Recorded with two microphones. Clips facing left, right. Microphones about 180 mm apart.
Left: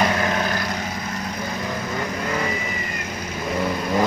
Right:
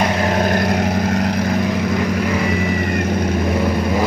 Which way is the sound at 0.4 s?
45° right (ahead or behind).